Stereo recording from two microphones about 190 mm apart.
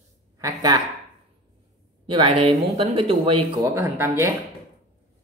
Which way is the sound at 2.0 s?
30° right (ahead or behind).